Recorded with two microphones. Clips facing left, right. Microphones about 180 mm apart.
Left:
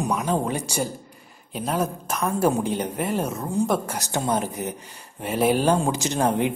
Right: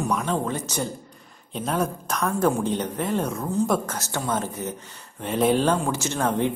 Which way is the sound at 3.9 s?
15° left (ahead or behind).